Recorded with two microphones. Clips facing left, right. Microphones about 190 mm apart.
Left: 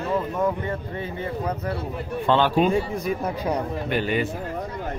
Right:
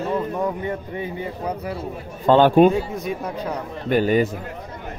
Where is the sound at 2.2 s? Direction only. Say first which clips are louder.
Right 7 dB; 45° right (ahead or behind).